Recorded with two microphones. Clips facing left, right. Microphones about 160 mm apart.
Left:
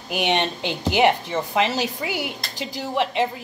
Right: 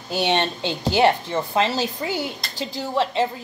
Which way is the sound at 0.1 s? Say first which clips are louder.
Right 1 dB; 20° left (ahead or behind).